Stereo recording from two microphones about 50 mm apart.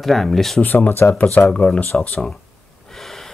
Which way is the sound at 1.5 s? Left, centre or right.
Centre.